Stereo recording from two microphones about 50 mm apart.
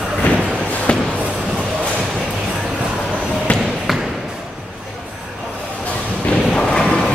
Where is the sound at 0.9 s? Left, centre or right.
Left.